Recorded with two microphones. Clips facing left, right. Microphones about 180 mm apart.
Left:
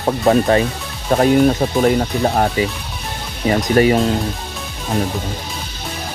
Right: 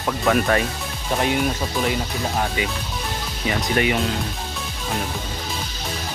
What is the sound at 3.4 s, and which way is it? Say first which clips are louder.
Speech: left 8 dB; 35° left (ahead or behind).